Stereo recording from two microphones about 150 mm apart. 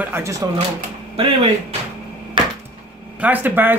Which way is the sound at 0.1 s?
20° right (ahead or behind).